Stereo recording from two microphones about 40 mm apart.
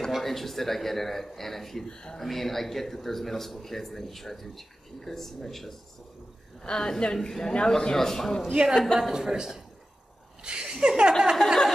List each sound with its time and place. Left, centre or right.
0.1 s speech: centre
1.9 s speech: centre
2.2 s a man's voice: centre
9.1 s a man's voice: centre
11.3 s speech: centre